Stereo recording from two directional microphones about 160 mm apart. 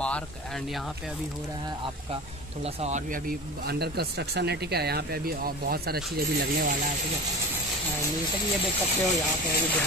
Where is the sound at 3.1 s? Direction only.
70° right (ahead or behind).